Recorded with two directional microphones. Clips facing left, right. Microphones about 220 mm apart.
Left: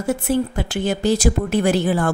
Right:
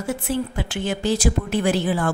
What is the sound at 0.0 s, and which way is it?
A woman's voice, 40° left (ahead or behind).